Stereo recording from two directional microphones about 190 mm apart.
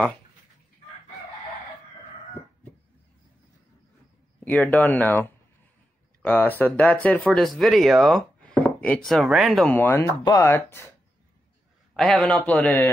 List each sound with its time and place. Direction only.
4.5 s a man's voice: 10° left (ahead or behind)
11.9 s a man's voice: 5° left (ahead or behind)